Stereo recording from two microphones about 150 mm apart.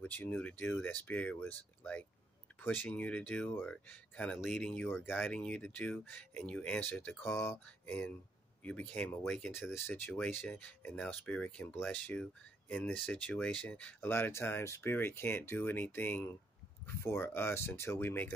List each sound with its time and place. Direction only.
0.0 s speech: 10° left (ahead or behind)